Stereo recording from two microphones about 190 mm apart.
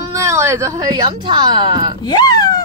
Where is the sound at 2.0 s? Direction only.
20° left (ahead or behind).